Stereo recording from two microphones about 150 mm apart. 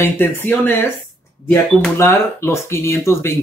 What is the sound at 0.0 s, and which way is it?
Speech, 15° left (ahead or behind).